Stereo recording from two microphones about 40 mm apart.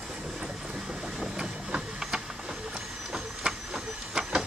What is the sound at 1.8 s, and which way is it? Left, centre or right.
Printer, centre.